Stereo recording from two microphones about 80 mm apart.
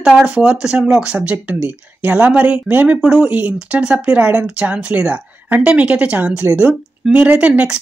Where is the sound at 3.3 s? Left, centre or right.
Centre.